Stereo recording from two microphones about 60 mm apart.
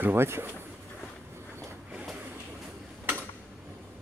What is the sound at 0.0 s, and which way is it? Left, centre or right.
Speech, right.